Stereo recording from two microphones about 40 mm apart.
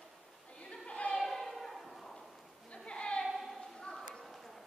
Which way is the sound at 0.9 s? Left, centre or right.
Left.